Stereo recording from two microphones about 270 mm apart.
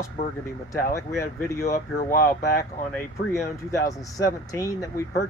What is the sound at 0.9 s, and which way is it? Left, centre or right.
Speech, centre.